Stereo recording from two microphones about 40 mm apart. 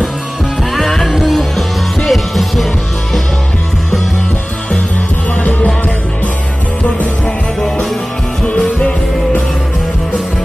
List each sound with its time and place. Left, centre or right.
0.7 s music: centre
5.4 s music: left